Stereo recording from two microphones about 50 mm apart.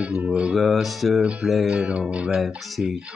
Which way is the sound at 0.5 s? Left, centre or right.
Centre.